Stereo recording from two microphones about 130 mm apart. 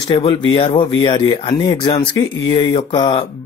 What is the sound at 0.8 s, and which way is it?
Speech, 40° left (ahead or behind).